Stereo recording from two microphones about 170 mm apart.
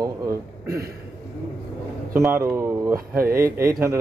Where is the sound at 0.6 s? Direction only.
65° right (ahead or behind).